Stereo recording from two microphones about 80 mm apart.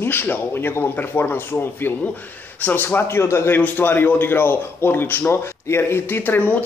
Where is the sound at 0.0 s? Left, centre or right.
Left.